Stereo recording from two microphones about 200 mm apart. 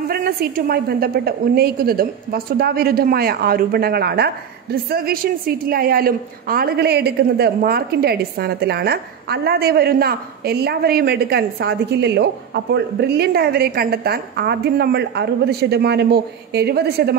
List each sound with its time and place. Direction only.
0.1 s a woman's voice: 50° right (ahead or behind)